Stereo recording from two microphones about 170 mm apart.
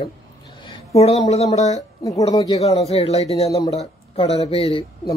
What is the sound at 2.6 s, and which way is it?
A man's voice, 40° left (ahead or behind).